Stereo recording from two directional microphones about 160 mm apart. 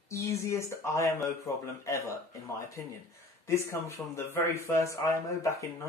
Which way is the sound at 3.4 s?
15° left (ahead or behind).